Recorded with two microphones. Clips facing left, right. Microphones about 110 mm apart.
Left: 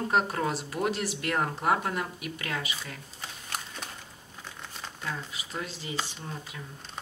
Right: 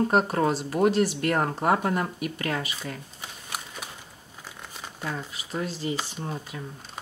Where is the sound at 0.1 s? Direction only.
35° right (ahead or behind).